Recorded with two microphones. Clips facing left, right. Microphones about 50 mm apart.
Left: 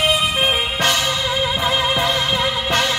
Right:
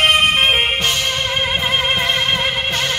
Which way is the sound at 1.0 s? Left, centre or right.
Right.